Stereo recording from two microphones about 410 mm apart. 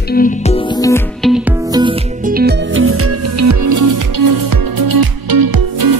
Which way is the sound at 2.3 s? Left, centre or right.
Right.